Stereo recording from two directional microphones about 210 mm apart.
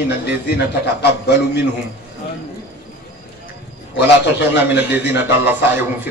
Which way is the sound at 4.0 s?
10° right (ahead or behind).